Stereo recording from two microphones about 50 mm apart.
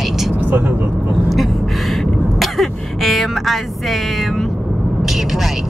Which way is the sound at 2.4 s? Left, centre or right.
Centre.